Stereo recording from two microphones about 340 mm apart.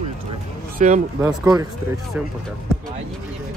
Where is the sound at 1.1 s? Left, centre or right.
Centre.